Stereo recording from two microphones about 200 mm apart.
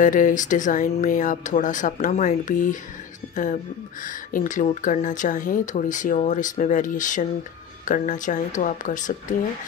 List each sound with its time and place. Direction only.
0.0 s speech: 40° left (ahead or behind)
4.0 s speech: 40° left (ahead or behind)